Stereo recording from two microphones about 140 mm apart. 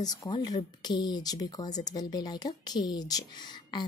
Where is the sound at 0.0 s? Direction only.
25° left (ahead or behind).